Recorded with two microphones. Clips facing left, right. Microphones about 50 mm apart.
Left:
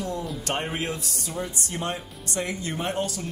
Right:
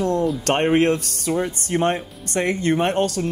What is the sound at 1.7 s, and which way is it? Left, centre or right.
Speech, right.